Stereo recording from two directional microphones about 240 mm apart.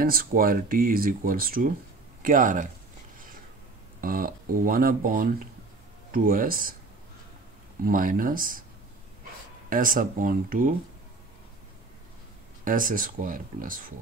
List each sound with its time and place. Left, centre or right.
0.0 s speech: right
4.0 s speech: right
7.8 s speech: right
9.7 s speech: right
12.6 s speech: right